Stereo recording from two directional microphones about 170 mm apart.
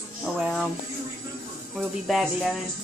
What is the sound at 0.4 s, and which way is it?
Music, 5° right (ahead or behind).